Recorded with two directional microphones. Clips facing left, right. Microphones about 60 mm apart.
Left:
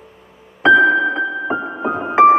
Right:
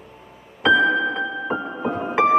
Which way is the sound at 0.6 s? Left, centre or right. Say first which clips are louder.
Left 6 dB; left.